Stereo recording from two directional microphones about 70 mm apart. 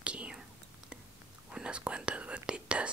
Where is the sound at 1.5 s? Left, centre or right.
Centre.